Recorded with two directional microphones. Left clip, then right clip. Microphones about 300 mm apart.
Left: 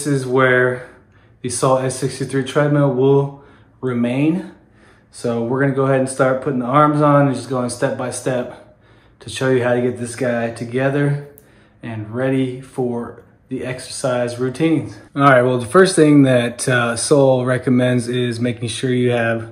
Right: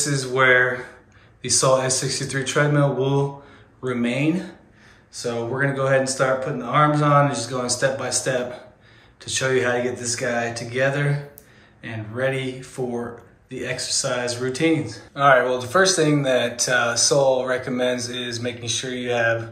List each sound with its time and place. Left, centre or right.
0.0 s speech: centre
15.1 s speech: left